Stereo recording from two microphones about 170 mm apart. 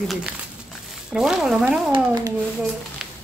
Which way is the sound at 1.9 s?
20° right (ahead or behind).